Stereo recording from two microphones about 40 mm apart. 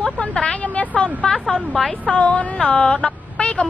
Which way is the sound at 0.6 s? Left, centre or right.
Left.